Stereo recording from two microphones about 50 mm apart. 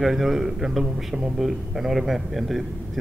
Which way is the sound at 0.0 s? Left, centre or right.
Centre.